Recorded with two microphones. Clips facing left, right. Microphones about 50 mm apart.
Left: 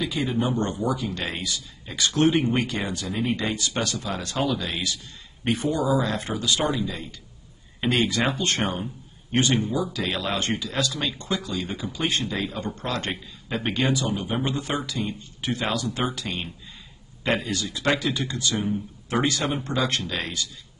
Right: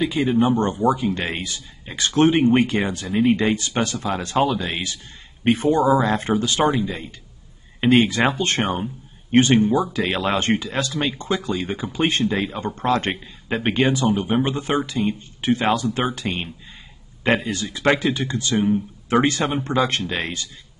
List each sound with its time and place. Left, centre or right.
0.0 s speech: right